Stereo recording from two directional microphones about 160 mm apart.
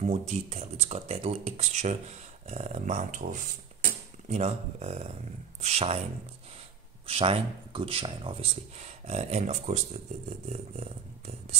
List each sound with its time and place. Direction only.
0.0 s speech: 45° right (ahead or behind)
7.1 s speech: 35° right (ahead or behind)